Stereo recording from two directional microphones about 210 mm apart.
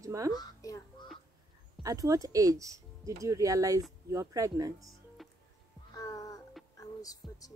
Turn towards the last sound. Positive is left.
turn(degrees=15)  # may be behind; listen again after turning